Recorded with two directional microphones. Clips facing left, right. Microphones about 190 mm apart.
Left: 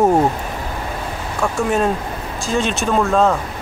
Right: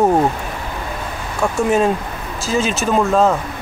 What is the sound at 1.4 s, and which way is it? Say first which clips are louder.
Speech: right 2 dB; centre (ahead or behind).